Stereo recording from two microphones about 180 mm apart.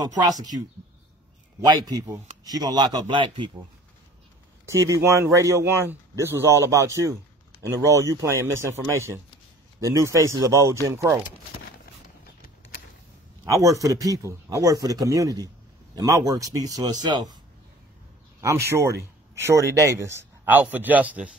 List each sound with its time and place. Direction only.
0.0 s speech: 20° right (ahead or behind)
1.6 s speech: 20° right (ahead or behind)
4.6 s speech: 15° right (ahead or behind)
13.5 s speech: 15° right (ahead or behind)
18.4 s speech: 15° right (ahead or behind)